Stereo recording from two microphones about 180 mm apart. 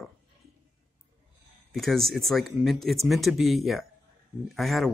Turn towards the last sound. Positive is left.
turn(degrees=0)  # may be behind; listen again after turning